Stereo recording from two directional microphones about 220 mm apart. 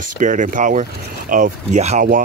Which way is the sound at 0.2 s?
35° right (ahead or behind).